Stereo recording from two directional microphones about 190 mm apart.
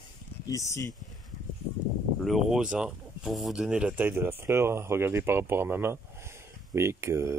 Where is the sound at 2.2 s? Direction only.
Centre (ahead or behind).